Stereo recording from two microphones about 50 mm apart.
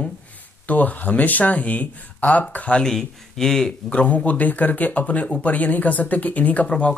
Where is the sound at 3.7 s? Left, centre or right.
Left.